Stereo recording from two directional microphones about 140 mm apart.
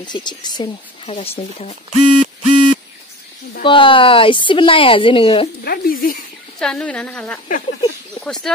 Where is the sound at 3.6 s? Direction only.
40° left (ahead or behind).